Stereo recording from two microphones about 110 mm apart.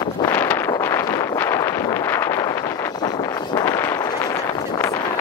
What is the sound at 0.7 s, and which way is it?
Wind noise, 25° left (ahead or behind).